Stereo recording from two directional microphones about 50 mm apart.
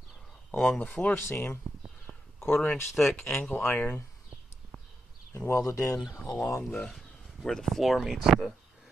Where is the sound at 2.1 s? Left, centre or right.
Centre.